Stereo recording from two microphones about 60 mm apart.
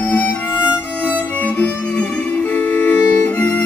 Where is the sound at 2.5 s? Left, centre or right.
Left.